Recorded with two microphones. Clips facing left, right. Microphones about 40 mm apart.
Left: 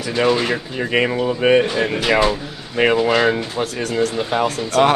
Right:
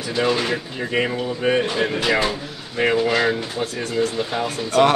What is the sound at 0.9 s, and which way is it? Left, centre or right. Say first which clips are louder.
Speech: left 4 dB; left.